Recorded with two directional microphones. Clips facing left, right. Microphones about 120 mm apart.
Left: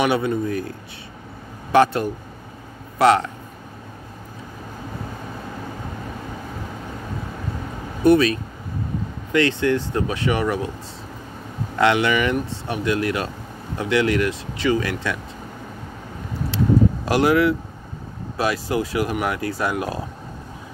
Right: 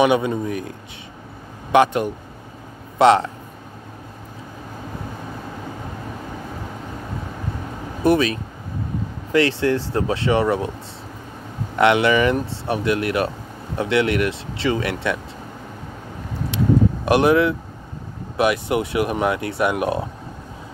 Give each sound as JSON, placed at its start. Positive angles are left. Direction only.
{"t": 0.0, "sound": "speech", "side_deg": -20}
{"t": 1.7, "sound": "speech", "side_deg": -15}
{"t": 8.0, "sound": "speech", "side_deg": -25}
{"t": 11.8, "sound": "speech", "side_deg": -25}
{"t": 16.4, "sound": "vehicle", "side_deg": -20}
{"t": 18.4, "sound": "speech", "side_deg": -20}